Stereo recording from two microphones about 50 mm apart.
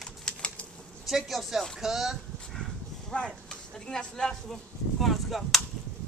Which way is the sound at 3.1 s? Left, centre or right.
Left.